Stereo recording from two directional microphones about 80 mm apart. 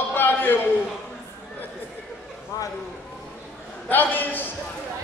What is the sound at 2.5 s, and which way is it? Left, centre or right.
Speech, left.